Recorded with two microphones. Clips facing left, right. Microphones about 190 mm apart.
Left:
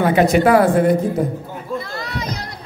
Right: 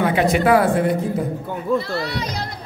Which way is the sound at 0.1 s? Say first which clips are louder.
Left 5 dB; 45° left (ahead or behind).